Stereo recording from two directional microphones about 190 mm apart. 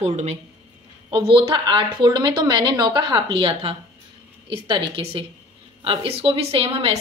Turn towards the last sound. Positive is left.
turn(degrees=-30)  # may be behind; listen again after turning